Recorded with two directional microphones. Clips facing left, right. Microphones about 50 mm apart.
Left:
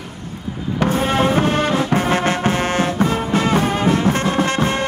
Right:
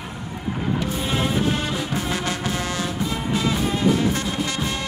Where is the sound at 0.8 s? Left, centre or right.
Left.